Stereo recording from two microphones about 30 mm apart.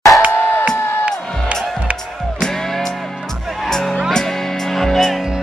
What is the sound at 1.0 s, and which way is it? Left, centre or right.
Music, right.